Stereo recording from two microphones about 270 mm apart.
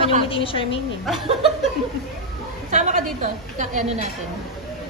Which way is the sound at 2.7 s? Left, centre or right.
Right.